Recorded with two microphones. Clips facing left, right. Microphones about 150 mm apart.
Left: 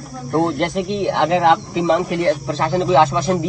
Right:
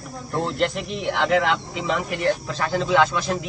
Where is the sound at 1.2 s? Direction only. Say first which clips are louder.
Left 5 dB; 30° left (ahead or behind).